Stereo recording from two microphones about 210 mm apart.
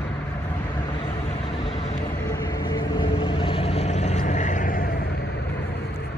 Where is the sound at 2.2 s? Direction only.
15° left (ahead or behind); by 5.0 s 40° left (ahead or behind).